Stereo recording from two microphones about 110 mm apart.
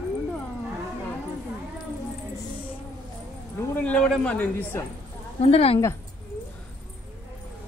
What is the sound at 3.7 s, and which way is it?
Speech, 10° left (ahead or behind).